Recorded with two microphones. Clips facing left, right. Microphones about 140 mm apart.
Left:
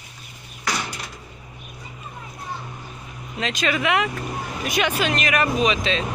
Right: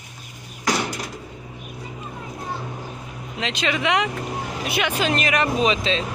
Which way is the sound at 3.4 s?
15° right (ahead or behind).